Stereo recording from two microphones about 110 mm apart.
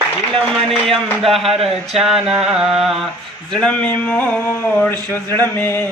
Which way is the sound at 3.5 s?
10° left (ahead or behind).